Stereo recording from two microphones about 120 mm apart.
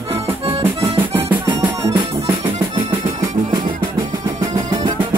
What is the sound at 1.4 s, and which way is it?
Music, 40° right (ahead or behind).